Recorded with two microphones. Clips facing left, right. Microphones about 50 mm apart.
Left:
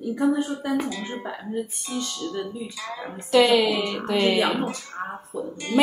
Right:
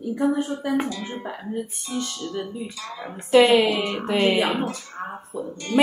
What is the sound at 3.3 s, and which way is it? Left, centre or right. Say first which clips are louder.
A woman's voice: right 2 dB; right.